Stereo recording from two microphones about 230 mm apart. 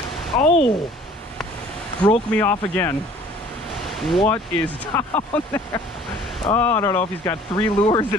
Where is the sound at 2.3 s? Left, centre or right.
Centre.